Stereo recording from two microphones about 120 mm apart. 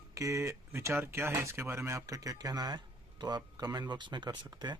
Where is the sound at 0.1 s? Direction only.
25° right (ahead or behind).